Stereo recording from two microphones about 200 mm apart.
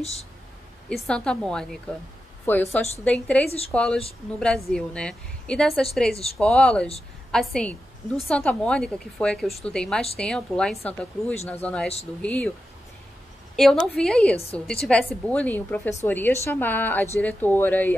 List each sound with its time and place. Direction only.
0.0 s speech: 30° left (ahead or behind)
0.8 s a woman's voice: 5° left (ahead or behind)
13.6 s a woman's voice: centre (ahead or behind)